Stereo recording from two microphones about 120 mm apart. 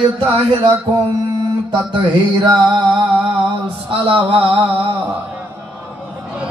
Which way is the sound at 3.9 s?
45° right (ahead or behind).